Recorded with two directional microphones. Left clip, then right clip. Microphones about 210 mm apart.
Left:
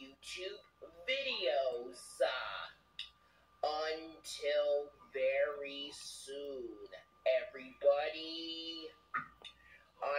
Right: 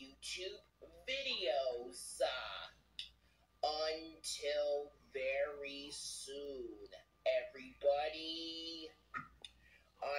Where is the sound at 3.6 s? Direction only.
20° right (ahead or behind).